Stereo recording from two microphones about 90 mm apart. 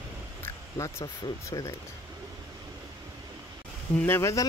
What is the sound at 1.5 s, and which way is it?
Speech, 40° left (ahead or behind).